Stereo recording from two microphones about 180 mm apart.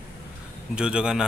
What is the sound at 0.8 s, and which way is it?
Speech, 5° right (ahead or behind).